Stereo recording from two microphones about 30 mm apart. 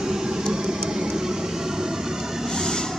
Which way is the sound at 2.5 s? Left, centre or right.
Centre.